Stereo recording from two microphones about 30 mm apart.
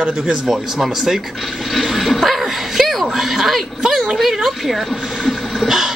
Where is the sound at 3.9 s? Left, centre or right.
Centre.